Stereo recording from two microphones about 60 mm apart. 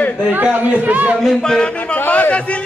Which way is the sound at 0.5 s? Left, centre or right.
Right.